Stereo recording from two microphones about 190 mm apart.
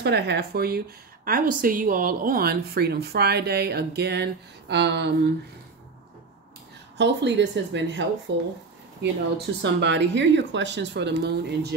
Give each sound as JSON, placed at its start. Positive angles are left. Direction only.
{"t": 0.0, "sound": "a woman's voice", "side_deg": -60}
{"t": 7.0, "sound": "speech", "side_deg": -65}
{"t": 9.6, "sound": "speech", "side_deg": -65}